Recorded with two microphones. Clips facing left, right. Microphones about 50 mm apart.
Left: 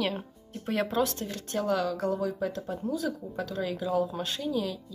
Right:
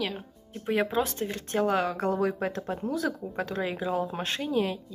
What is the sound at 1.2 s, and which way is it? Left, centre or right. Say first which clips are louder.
Speech: right 3 dB; right.